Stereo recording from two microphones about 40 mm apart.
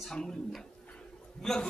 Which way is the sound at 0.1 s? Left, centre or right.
Centre.